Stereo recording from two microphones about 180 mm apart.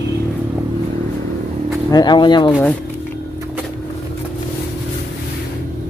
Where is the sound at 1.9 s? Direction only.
25° left (ahead or behind).